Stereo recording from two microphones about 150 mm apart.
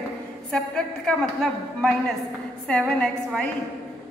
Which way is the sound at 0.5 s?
5° left (ahead or behind).